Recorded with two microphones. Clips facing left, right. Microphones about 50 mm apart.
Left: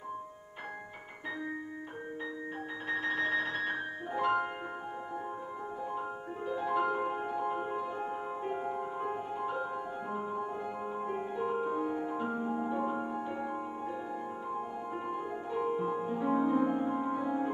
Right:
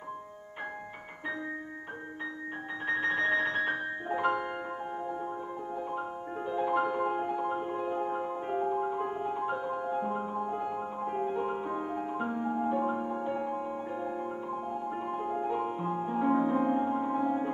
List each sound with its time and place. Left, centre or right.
3.0 s music: right
6.5 s music: right
14.9 s music: centre